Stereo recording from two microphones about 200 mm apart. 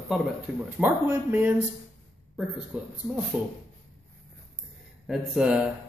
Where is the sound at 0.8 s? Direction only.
10° right (ahead or behind).